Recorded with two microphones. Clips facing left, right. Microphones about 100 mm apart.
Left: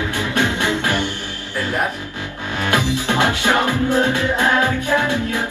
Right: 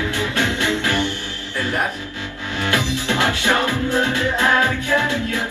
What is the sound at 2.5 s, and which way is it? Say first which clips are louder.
Music: left 2 dB; 15° left (ahead or behind).